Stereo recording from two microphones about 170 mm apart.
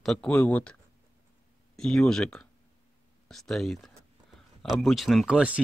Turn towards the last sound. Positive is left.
turn(degrees=-5)  # may be behind; listen again after turning